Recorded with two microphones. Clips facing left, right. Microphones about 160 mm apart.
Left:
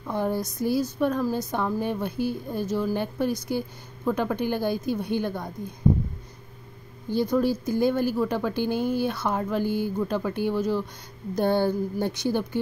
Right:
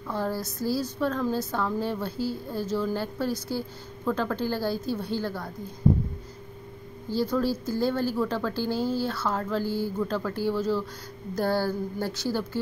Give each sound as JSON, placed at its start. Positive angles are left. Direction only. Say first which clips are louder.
{"t": 0.0, "sound": "a woman's voice", "louder": "left 3 dB", "side_deg": 20}
{"t": 7.1, "sound": "a woman's voice", "louder": "left 3 dB", "side_deg": 15}